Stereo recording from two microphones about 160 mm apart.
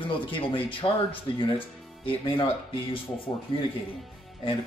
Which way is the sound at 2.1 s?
35° left (ahead or behind).